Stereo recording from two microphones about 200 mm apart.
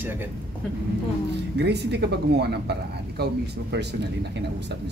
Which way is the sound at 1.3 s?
60° right (ahead or behind).